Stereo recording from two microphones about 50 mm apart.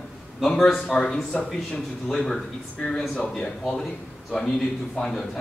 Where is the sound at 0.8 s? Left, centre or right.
Centre.